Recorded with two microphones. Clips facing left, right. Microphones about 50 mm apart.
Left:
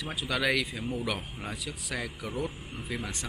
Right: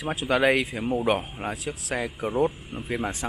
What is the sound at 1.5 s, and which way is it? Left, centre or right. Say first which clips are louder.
Speech: right 5 dB; right.